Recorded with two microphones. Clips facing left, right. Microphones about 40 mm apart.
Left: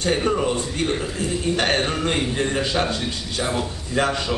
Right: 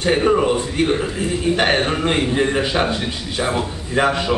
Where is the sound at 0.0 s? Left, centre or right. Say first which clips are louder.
Right 5 dB; right.